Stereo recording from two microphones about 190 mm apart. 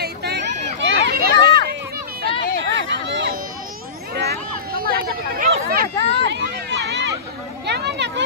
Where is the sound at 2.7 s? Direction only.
70° right (ahead or behind).